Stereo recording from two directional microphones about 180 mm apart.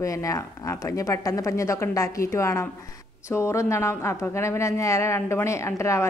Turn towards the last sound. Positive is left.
turn(degrees=15)  # may be behind; listen again after turning